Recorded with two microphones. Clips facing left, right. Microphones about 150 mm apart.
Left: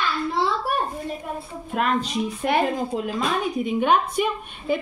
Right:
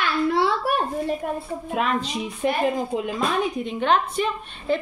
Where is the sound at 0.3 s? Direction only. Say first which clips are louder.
Right 2 dB; 65° right (ahead or behind).